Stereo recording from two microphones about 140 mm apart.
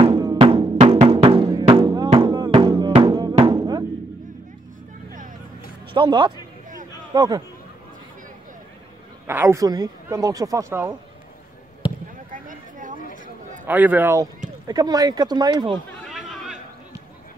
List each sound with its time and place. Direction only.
0.0 s music: 30° right (ahead or behind)
0.7 s music: 45° right (ahead or behind); by 3.8 s 30° right (ahead or behind)
5.9 s a man's voice: 35° right (ahead or behind)
9.3 s speech: 20° right (ahead or behind)
12.4 s a sound: 70° right (ahead or behind)
13.7 s a man's voice: 10° right (ahead or behind)
14.7 s speech: 25° right (ahead or behind)
16.0 s chatter: centre (ahead or behind)